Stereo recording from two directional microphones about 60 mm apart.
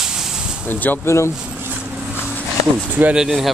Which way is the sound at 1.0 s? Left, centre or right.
Left.